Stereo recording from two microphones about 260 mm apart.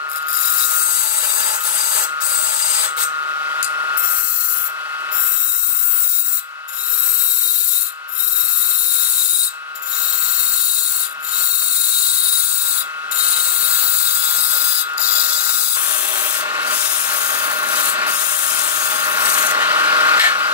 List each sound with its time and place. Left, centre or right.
0.2 s wood: centre
13.5 s a sound: right
15.0 s rub: right